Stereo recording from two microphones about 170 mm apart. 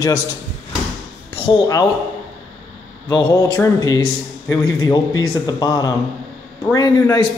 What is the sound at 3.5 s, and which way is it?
Speech, 20° left (ahead or behind).